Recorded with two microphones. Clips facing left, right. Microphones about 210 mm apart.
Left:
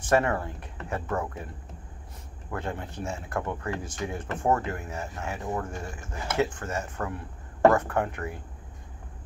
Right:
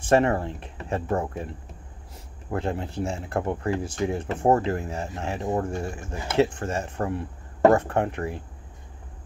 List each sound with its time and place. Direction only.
0.0 s speech: 25° right (ahead or behind)
2.5 s speech: 30° right (ahead or behind)